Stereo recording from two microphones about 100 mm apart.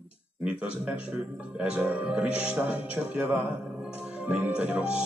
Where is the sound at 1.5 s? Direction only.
15° right (ahead or behind).